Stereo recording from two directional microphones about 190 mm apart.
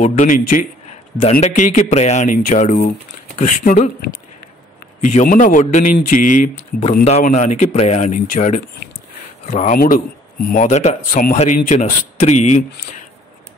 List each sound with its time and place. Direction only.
0.0 s a man's voice: 40° left (ahead or behind)
5.0 s a man's voice: 40° left (ahead or behind)